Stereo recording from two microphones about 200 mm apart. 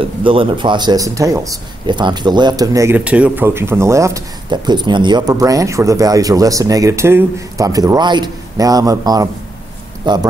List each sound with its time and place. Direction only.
0.2 s speech: 25° right (ahead or behind)